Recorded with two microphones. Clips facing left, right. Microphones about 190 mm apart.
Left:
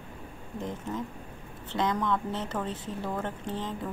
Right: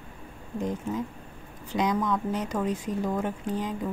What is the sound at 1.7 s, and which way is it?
A woman's voice, 15° right (ahead or behind).